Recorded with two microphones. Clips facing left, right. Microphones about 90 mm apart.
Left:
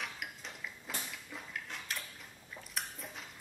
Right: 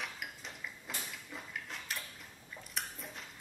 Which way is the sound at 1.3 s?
Centre (ahead or behind).